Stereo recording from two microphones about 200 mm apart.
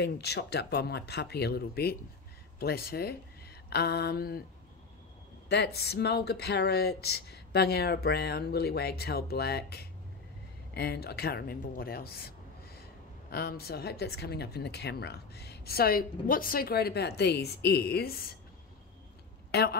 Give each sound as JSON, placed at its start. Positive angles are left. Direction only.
{"t": 0.0, "sound": "speech", "side_deg": 55}
{"t": 5.5, "sound": "speech", "side_deg": 55}
{"t": 19.5, "sound": "a woman's voice", "side_deg": 55}